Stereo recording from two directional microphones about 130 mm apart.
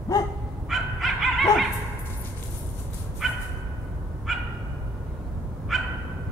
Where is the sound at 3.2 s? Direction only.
Centre (ahead or behind).